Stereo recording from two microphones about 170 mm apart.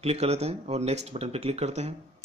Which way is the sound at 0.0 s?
40° right (ahead or behind).